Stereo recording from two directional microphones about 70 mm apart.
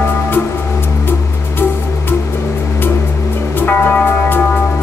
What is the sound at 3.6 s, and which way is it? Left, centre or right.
Music, left.